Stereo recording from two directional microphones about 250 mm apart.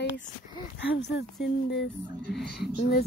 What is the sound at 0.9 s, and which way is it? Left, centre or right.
Speech, left.